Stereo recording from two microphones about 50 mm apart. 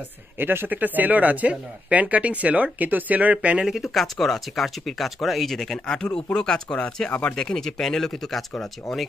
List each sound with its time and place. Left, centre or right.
0.4 s speech: right
0.7 s speech: right
3.6 s speech: centre; by 7.3 s left
7.3 s speech: centre